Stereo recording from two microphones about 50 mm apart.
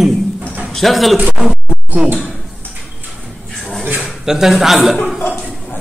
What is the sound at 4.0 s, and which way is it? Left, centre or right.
Speech, centre.